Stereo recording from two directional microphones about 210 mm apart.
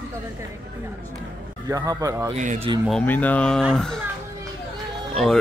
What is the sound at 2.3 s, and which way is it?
Speech, 35° right (ahead or behind).